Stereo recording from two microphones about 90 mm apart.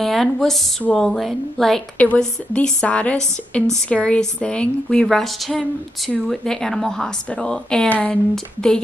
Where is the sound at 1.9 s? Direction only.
15° left (ahead or behind).